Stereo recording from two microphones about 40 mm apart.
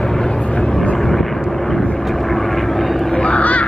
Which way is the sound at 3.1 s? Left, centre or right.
Left.